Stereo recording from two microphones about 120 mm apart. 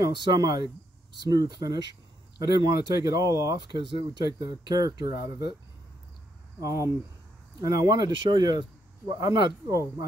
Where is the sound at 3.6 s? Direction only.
40° right (ahead or behind).